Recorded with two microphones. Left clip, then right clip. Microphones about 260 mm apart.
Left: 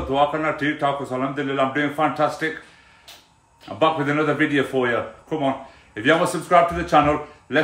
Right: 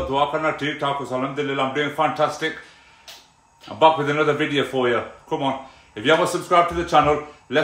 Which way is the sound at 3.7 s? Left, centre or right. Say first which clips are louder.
Right 3 dB; centre.